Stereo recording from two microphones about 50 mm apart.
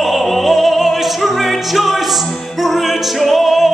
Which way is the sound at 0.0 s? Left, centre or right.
Centre.